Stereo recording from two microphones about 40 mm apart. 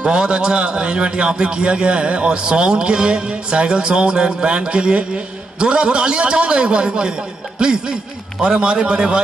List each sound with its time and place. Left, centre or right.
0.0 s a man's voice: right